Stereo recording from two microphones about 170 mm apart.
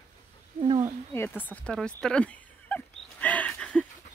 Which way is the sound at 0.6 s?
45° right (ahead or behind).